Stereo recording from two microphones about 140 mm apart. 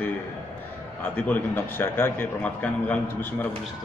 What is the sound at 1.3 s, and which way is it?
A man's voice, 15° left (ahead or behind).